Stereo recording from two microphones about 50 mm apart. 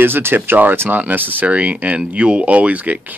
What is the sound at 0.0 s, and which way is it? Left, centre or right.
Speech, right.